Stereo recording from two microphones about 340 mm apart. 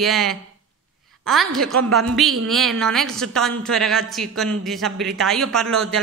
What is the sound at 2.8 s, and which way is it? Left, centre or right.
Speech, centre.